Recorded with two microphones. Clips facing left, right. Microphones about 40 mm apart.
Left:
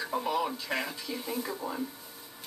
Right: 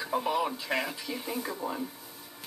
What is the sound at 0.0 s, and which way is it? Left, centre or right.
Speech, centre.